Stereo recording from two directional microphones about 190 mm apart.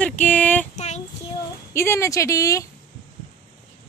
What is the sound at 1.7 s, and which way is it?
Speech, 15° left (ahead or behind).